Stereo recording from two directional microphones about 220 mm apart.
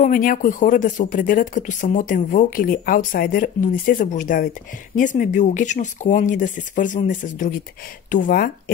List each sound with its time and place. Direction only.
0.0 s speech: 40° left (ahead or behind)